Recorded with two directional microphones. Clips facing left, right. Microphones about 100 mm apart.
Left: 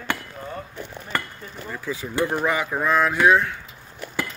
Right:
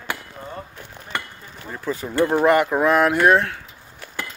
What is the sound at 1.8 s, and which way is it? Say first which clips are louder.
Speech: right 5 dB; 45° right (ahead or behind).